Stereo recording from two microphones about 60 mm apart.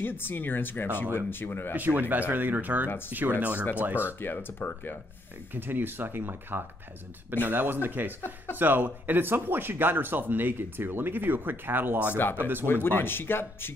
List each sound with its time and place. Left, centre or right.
0.0 s speech: left
1.8 s speech: right
4.2 s speech: left
5.5 s speech: right
12.8 s speech: left